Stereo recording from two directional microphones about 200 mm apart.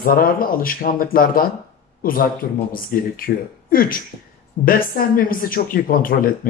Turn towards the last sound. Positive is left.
turn(degrees=45)  # may be behind; listen again after turning